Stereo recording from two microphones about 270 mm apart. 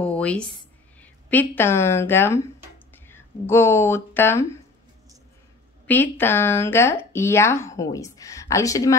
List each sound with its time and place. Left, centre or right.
0.0 s a sound: centre
1.0 s speech: centre
6.0 s speech: centre